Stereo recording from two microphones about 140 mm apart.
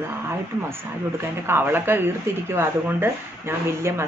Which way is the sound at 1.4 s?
15° right (ahead or behind).